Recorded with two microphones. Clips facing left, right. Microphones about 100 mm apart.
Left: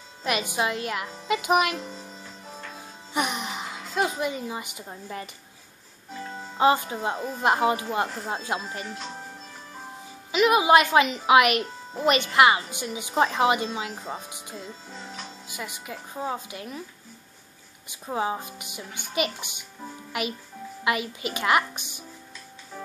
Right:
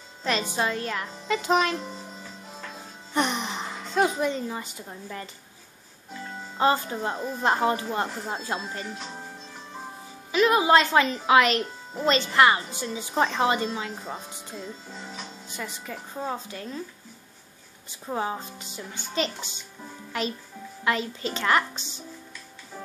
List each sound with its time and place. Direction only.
0.2 s a woman's voice: 15° left (ahead or behind)
3.1 s a sound: 5° left (ahead or behind)
6.6 s a woman's voice: 15° left (ahead or behind)
10.3 s a woman's voice: 15° left (ahead or behind)
14.3 s music: 15° left (ahead or behind)
15.4 s a woman's voice: 10° left (ahead or behind)
17.8 s a woman's voice: 15° left (ahead or behind)